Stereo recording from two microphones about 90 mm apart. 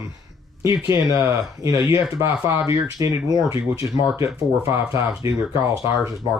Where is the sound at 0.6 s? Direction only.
35° right (ahead or behind).